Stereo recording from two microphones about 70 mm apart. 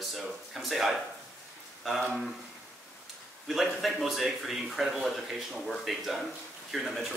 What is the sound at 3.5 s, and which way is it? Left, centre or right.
Speech, centre.